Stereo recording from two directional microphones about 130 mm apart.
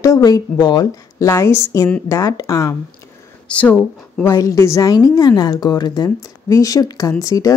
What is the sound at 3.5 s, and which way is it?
Speech, 10° left (ahead or behind).